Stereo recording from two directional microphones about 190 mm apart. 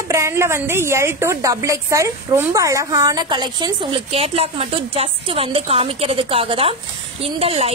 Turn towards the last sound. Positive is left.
turn(degrees=-30)  # may be behind; listen again after turning